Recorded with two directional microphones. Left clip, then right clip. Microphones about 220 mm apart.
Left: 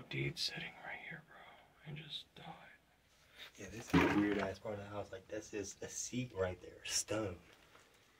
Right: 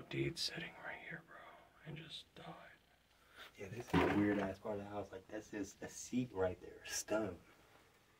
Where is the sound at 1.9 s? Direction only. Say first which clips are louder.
Left 4 dB; 5° right (ahead or behind).